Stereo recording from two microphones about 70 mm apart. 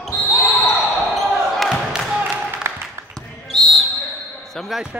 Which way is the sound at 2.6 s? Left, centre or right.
Right.